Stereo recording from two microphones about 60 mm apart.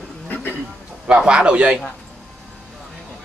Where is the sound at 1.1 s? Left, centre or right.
Centre.